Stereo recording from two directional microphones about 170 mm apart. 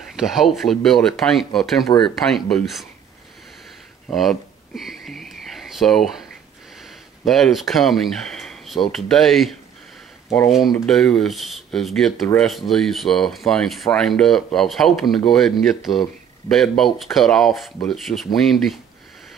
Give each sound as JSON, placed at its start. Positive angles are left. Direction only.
{"t": 0.0, "sound": "speech", "side_deg": 0}
{"t": 1.9, "sound": "speech", "side_deg": 30}
{"t": 2.1, "sound": "speech", "side_deg": 0}
{"t": 4.1, "sound": "a sound", "side_deg": 0}
{"t": 6.8, "sound": "speech", "side_deg": 0}
{"t": 10.5, "sound": "speech", "side_deg": 0}